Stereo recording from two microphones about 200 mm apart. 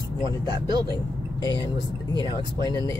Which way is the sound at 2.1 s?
20° right (ahead or behind).